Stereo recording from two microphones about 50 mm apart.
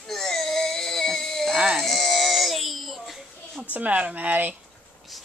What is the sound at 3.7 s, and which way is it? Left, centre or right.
Speech, right.